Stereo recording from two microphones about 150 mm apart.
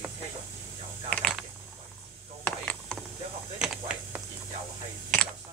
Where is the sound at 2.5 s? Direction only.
5° left (ahead or behind).